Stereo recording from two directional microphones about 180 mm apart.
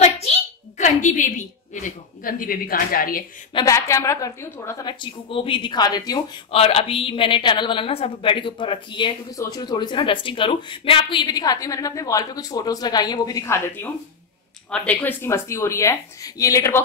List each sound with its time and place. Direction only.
0.7 s a woman's voice: 45° left (ahead or behind)
3.5 s a woman's voice: 20° left (ahead or behind)
6.5 s a woman's voice: 35° left (ahead or behind); by 16.8 s 15° left (ahead or behind)